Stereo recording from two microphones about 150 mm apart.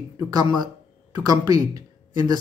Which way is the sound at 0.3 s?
25° right (ahead or behind).